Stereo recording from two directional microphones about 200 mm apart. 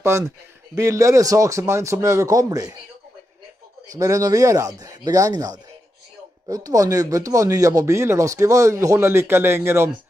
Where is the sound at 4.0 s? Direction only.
15° right (ahead or behind).